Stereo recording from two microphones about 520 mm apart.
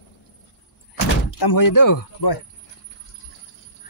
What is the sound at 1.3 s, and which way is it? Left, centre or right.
Speech, left.